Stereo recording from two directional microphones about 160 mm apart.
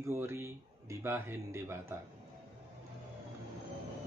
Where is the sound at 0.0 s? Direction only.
15° right (ahead or behind).